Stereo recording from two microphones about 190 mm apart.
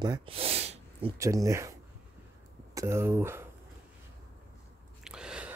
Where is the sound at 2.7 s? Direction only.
15° right (ahead or behind).